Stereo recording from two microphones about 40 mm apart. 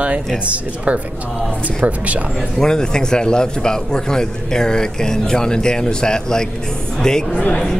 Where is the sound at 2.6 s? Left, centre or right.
Centre.